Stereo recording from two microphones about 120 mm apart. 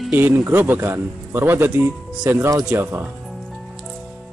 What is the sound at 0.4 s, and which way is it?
Speech, 20° right (ahead or behind).